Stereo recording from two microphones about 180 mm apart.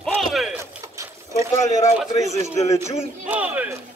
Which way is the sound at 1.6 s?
40° left (ahead or behind).